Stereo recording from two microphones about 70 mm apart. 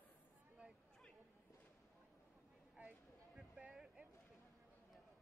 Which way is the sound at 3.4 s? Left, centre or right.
Centre.